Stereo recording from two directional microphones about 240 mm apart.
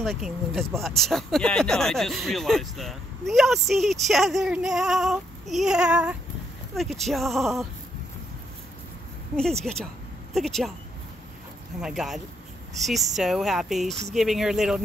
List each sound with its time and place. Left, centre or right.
0.0 s speech: centre
9.4 s speech: centre
11.8 s speech: centre